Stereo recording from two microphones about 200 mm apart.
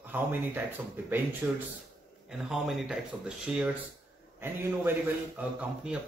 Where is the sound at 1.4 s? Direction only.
10° right (ahead or behind).